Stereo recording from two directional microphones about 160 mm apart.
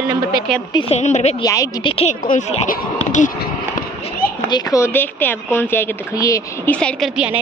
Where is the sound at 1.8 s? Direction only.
35° left (ahead or behind).